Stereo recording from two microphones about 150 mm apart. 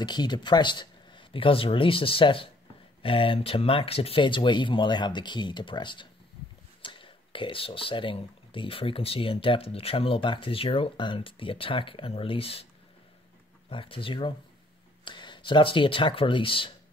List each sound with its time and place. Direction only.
0.0 s speech: 30° left (ahead or behind)
13.7 s speech: 35° left (ahead or behind)